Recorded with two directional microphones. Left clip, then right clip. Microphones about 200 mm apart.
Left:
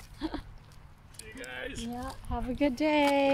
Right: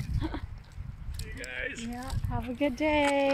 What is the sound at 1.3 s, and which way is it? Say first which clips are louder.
Speech: right 3 dB; 5° left (ahead or behind).